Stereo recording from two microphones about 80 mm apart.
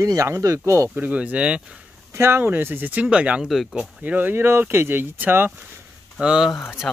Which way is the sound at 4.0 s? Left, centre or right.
Right.